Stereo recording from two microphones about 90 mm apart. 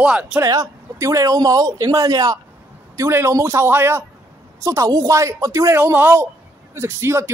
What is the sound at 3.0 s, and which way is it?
A man's voice, 30° right (ahead or behind).